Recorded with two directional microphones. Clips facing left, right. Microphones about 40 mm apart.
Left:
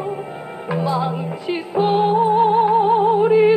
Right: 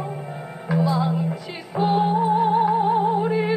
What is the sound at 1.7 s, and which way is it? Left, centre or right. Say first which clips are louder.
Music: left 4 dB; left.